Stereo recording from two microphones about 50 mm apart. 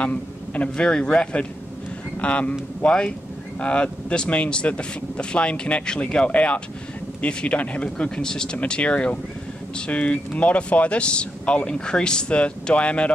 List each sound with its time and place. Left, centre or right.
0.0 s speech: left